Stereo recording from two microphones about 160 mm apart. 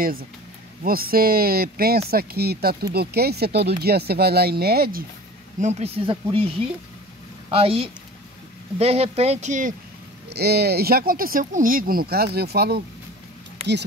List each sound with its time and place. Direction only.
0.0 s speech: 65° right (ahead or behind)
5.6 s speech: 45° right (ahead or behind)
7.4 s speech: 35° right (ahead or behind); by 9.8 s 50° right (ahead or behind)
10.3 s speech: 90° right